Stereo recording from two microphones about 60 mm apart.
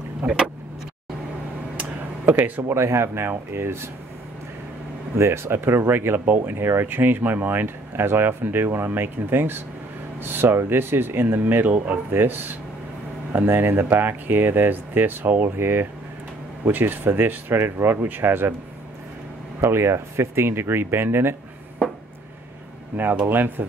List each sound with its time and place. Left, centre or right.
0.2 s speech: right
1.8 s a sound: right
2.7 s speech: right
5.1 s speech: right
19.6 s speech: right
23.2 s speech: right